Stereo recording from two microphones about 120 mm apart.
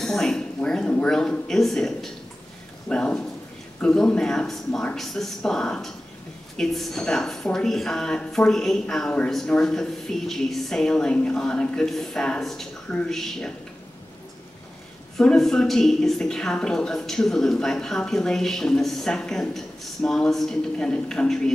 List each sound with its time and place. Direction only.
0.0 s a woman's voice: 5° left (ahead or behind)
15.1 s a woman's voice: 5° left (ahead or behind)